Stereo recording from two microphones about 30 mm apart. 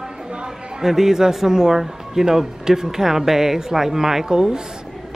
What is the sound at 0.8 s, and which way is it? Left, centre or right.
Speech, centre.